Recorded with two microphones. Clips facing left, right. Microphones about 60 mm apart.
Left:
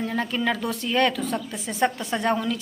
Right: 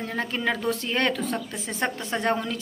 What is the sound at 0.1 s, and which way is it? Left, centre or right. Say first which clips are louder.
Speech: right 2 dB; right.